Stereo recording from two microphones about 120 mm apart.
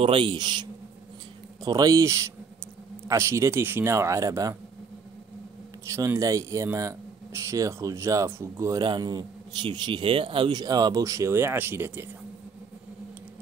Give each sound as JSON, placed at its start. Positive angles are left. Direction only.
{"t": 0.0, "sound": "a man's voice", "side_deg": -45}
{"t": 5.9, "sound": "speech", "side_deg": -25}
{"t": 8.8, "sound": "a man's voice", "side_deg": -35}